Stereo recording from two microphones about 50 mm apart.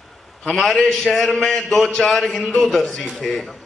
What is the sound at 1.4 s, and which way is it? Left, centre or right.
Speech, centre.